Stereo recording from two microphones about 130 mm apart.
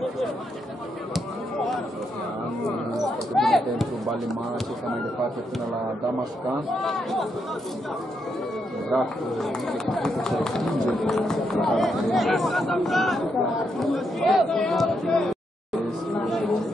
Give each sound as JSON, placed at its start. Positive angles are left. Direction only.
{"t": 3.3, "sound": "music", "side_deg": 0}
{"t": 6.7, "sound": "speech", "side_deg": 0}
{"t": 8.9, "sound": "speech", "side_deg": 0}
{"t": 13.7, "sound": "a sound", "side_deg": 0}